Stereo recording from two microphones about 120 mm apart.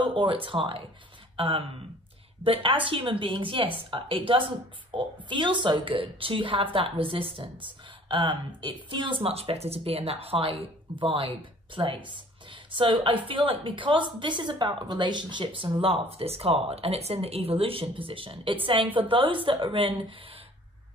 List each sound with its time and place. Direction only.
0.1 s speech: 45° right (ahead or behind)